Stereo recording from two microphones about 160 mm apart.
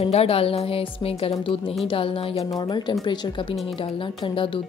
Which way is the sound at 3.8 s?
30° left (ahead or behind).